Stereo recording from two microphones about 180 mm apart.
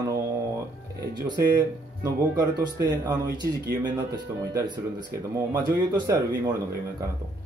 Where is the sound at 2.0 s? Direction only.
15° right (ahead or behind).